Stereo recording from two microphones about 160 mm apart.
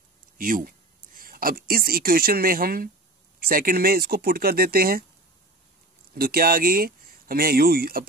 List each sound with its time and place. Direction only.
0.4 s speech: 60° right (ahead or behind)
6.1 s speech: 65° right (ahead or behind)